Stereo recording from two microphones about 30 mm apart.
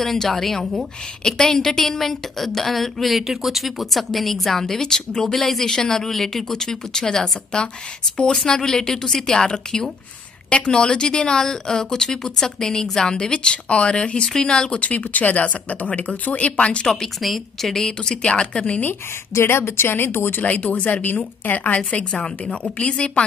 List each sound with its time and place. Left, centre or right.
0.0 s a woman's voice: centre
5.3 s a woman's voice: centre
10.5 s speech: left
14.7 s speech: left
16.8 s a woman's voice: centre
17.2 s a woman's voice: centre
17.8 s speech: left
20.4 s speech: left
20.9 s a woman's voice: left
21.7 s speech: left